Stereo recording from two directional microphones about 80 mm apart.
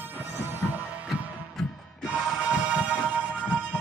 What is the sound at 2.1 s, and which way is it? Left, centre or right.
Music, centre.